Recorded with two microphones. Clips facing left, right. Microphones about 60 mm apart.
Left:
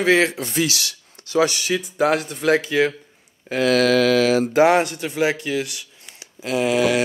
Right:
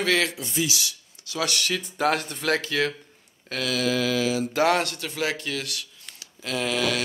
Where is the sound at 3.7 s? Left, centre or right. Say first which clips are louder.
Left 8 dB; left.